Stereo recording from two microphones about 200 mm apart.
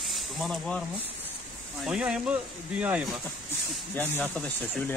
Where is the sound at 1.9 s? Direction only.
5° right (ahead or behind).